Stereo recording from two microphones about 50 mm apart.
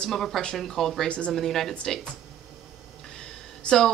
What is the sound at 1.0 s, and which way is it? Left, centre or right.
Speech, left.